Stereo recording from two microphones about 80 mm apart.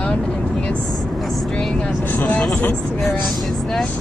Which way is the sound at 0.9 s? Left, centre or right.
Centre.